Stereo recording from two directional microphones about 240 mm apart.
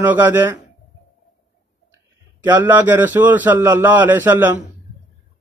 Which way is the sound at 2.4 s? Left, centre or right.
Centre.